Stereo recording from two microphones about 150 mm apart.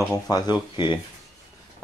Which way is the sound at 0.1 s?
25° left (ahead or behind).